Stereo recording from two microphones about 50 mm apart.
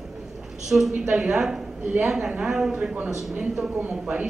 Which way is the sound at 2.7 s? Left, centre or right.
Right.